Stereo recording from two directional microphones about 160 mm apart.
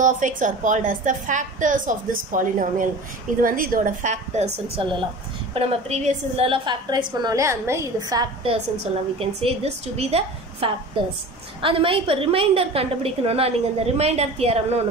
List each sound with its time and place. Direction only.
0.0 s a woman's voice: 50° right (ahead or behind)
4.8 s a woman's voice: 35° right (ahead or behind)
9.2 s a woman's voice: 40° right (ahead or behind)